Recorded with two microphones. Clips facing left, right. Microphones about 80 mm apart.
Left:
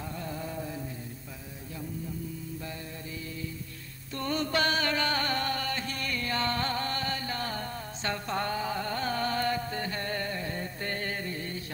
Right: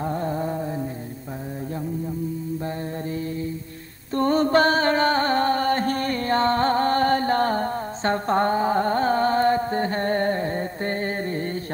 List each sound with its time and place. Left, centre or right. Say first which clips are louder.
0.0 s a sound: right 12 dB; right
2.6 s mantra: right 11 dB; right
4.1 s music: right 12 dB; right